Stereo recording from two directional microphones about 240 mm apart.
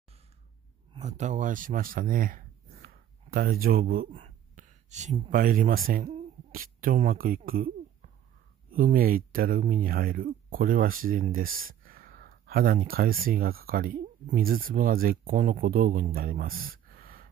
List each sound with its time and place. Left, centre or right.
0.9 s speech: right